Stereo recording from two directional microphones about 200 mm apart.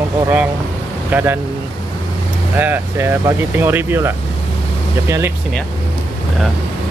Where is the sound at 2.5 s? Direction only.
10° right (ahead or behind).